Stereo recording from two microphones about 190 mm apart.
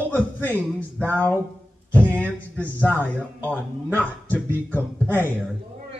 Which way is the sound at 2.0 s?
10° right (ahead or behind).